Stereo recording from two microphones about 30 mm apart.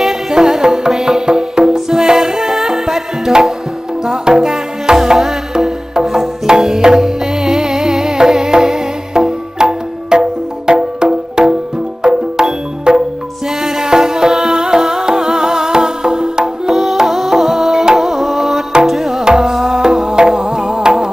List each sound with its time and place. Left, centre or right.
0.3 s music: right
4.1 s music: right
13.6 s music: centre
17.0 s music: centre
19.2 s music: right